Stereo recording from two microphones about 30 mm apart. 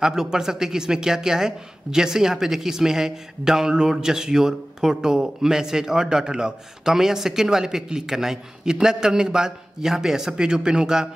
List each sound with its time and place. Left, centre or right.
0.0 s speech: right